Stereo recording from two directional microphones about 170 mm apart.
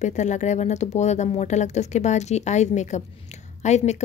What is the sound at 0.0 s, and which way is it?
A woman's voice, 45° left (ahead or behind).